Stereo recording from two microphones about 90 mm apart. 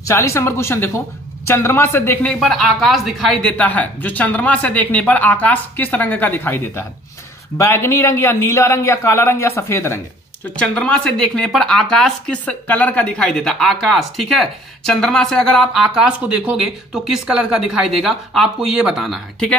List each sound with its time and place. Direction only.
0.0 s speech: 30° left (ahead or behind)
2.4 s speech: centre (ahead or behind)
3.3 s a man's voice: 10° left (ahead or behind); by 9.9 s 30° left (ahead or behind)
10.5 s speech: 10° left (ahead or behind)